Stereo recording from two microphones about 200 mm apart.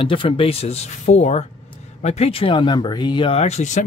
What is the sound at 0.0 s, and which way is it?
Speech, 25° left (ahead or behind).